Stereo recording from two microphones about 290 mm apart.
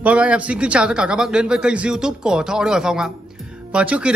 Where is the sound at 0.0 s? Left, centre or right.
Centre.